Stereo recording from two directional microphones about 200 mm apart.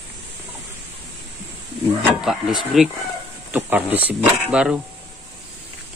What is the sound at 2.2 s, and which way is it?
Speech, centre (ahead or behind).